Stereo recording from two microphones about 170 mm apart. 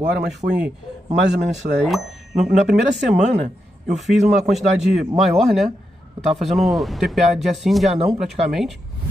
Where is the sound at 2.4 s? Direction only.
45° right (ahead or behind).